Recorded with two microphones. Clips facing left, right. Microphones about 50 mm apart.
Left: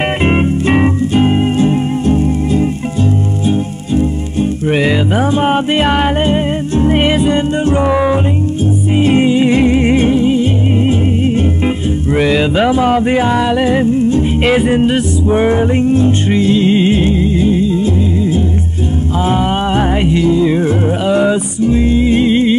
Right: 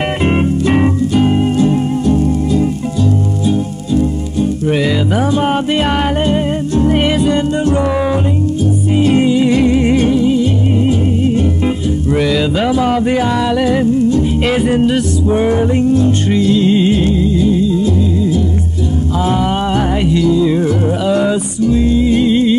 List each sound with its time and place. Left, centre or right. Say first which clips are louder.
0.0 s music: left 1 dB; left